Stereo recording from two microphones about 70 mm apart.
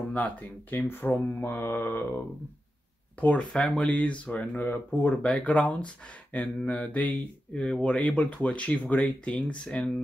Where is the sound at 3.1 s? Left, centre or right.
Centre.